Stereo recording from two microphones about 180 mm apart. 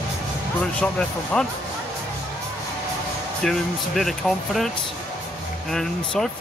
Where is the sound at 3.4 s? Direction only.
Centre (ahead or behind).